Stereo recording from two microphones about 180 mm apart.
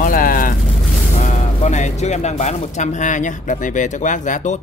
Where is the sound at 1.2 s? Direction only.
40° left (ahead or behind).